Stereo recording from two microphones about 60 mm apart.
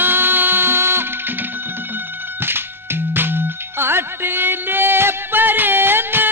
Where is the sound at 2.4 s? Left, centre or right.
Right.